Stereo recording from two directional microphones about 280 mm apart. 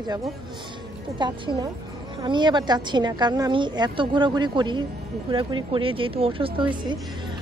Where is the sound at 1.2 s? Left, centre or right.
Centre.